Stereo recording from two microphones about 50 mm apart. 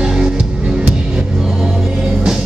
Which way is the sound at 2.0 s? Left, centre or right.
Centre.